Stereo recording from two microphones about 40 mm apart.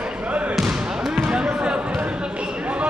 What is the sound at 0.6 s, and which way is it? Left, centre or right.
Basketball bounce, centre.